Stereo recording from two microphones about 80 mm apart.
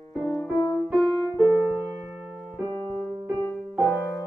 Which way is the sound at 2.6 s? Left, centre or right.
Right.